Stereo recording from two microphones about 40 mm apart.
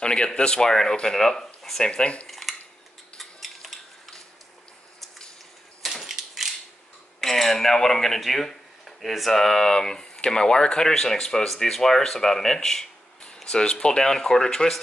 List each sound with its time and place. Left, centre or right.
0.0 s speech: left
2.2 s dishes: centre
3.2 s a sound: centre
6.0 s a sound: centre
7.2 s cutlery: centre
8.2 s speech: centre